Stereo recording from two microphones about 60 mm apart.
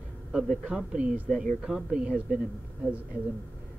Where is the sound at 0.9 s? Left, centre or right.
Centre.